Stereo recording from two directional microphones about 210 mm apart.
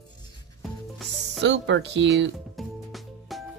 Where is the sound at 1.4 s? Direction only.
55° right (ahead or behind).